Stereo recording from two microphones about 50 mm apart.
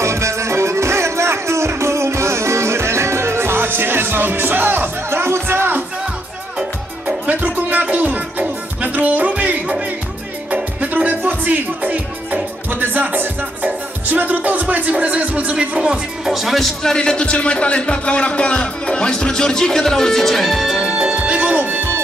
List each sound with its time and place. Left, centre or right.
0.0 s music: right
7.1 s music: right
16.3 s speech: centre
20.7 s music: centre